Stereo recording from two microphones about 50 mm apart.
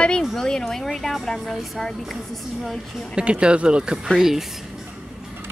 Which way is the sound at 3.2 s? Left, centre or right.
Right.